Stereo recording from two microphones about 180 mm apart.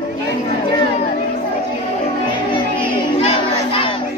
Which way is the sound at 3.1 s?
35° left (ahead or behind).